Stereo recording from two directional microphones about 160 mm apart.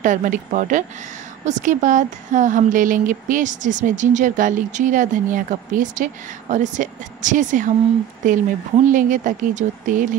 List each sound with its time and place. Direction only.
0.0 s speech: 55° right (ahead or behind)